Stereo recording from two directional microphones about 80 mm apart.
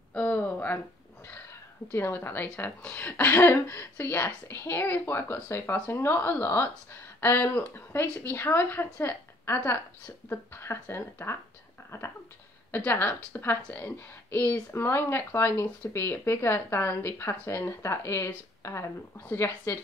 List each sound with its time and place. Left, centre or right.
0.1 s a sound: centre
1.9 s speech: left
12.7 s speech: left